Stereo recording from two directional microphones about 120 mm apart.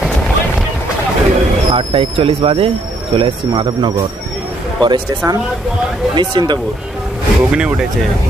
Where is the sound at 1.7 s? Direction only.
50° right (ahead or behind).